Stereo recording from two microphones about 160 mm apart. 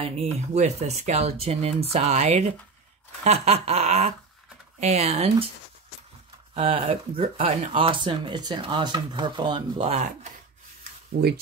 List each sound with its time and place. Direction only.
0.0 s speech: 40° right (ahead or behind)
6.5 s speech: 35° right (ahead or behind)
11.2 s speech: 65° right (ahead or behind)